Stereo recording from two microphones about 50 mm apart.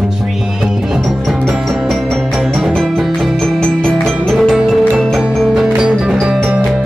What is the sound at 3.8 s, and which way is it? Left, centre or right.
Music, centre.